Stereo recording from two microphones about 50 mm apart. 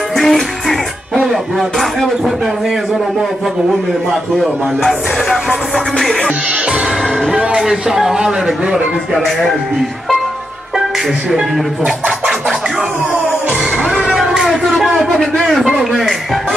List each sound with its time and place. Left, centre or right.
0.1 s music: centre
4.4 s music: centre
7.5 s speech: centre
9.2 s speech: centre
13.8 s a sound: centre
14.4 s a sound: centre